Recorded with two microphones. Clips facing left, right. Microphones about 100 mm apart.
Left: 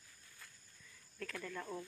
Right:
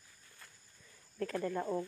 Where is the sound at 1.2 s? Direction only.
35° right (ahead or behind).